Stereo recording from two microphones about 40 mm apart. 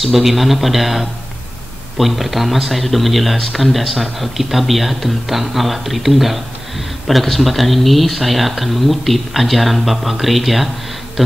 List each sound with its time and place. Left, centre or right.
0.0 s speech: centre